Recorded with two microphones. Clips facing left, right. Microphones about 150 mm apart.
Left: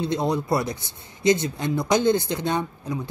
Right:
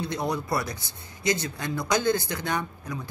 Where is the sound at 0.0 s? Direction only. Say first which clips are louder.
Left 5 dB; 25° left (ahead or behind).